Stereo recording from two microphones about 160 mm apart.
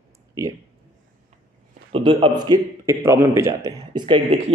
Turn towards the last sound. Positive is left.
turn(degrees=-30)  # may be behind; listen again after turning